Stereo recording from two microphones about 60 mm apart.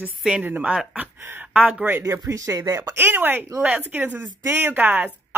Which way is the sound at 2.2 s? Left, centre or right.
Right.